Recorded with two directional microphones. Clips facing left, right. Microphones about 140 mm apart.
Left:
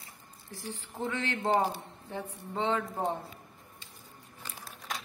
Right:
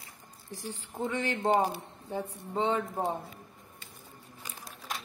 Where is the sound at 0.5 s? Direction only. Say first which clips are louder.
Right 1 dB; 15° right (ahead or behind).